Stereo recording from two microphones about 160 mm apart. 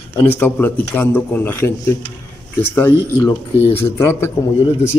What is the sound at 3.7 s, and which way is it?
Speech, 15° left (ahead or behind).